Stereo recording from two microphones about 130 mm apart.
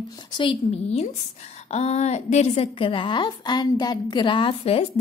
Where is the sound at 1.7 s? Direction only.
60° left (ahead or behind).